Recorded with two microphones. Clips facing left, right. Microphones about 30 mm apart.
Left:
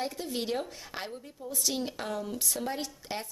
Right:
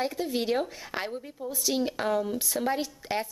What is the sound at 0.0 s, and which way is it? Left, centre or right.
Speech, centre.